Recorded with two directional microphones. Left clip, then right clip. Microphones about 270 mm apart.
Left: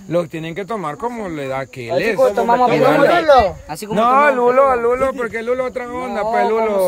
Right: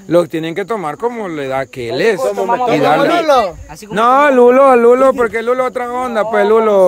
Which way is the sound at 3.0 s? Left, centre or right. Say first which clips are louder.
Even; right.